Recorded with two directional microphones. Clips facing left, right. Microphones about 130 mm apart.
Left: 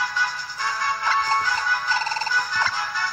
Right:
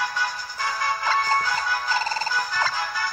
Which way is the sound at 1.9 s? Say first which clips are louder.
Right 1 dB; 40° right (ahead or behind).